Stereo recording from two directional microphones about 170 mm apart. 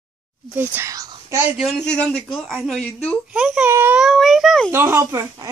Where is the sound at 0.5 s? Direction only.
15° right (ahead or behind).